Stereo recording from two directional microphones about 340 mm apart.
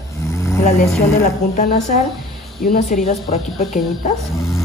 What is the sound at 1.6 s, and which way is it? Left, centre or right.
Speech, left.